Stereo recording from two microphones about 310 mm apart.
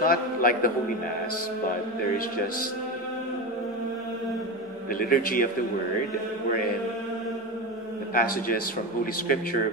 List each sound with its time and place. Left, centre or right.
0.0 s a man's voice: left
2.1 s a man's voice: left
4.9 s a man's voice: left
8.1 s a man's voice: left